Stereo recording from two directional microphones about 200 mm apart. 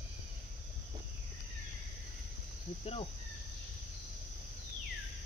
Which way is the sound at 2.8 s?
30° left (ahead or behind).